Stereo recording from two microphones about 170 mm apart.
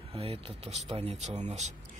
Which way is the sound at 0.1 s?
35° right (ahead or behind).